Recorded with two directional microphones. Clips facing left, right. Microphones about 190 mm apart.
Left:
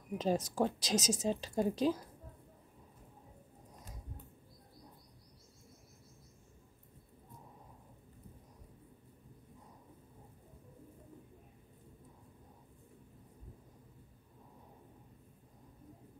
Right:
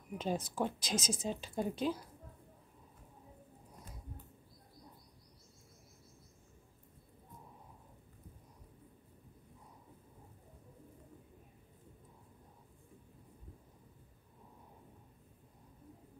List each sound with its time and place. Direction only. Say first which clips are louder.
0.2 s a woman's voice: left 4 dB; 40° left (ahead or behind)